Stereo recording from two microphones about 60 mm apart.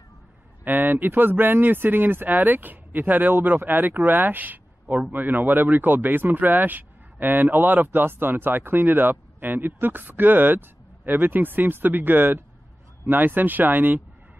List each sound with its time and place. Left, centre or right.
0.7 s speech: right